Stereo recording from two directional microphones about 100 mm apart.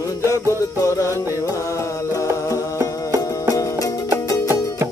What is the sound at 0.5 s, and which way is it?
Music, 30° left (ahead or behind).